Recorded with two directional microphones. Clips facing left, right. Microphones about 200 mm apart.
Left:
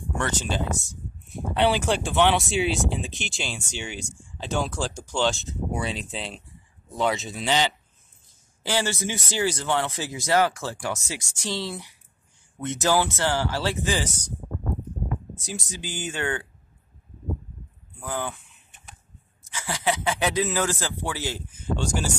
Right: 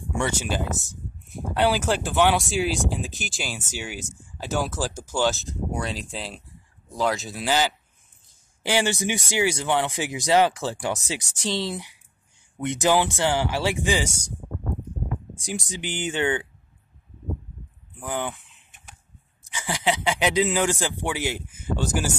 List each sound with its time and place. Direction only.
0.1 s speech: 10° right (ahead or behind)
8.6 s speech: 15° right (ahead or behind)
15.3 s speech: 15° right (ahead or behind)
17.9 s speech: 15° right (ahead or behind)